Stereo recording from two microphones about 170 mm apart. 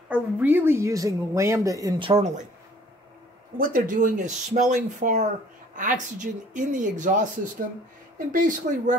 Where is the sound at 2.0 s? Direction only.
40° right (ahead or behind).